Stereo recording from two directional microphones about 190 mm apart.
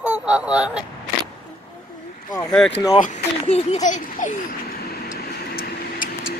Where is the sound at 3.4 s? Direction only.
35° left (ahead or behind).